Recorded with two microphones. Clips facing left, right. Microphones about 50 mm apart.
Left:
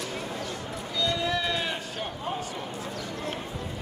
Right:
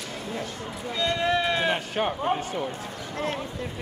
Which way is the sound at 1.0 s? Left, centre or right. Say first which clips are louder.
Right 3 dB; right.